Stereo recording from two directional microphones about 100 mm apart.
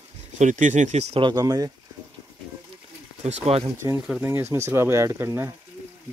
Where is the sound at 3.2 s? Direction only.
90° right.